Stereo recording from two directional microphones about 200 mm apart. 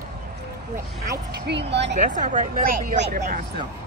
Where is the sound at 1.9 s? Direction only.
40° right (ahead or behind).